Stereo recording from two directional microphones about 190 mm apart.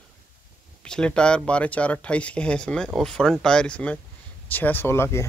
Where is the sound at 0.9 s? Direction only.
5° left (ahead or behind).